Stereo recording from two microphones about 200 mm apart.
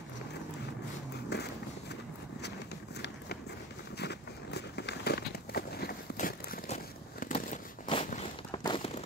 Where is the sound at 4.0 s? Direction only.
55° left (ahead or behind).